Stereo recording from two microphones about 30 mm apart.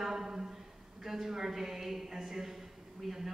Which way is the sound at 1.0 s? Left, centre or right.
Centre.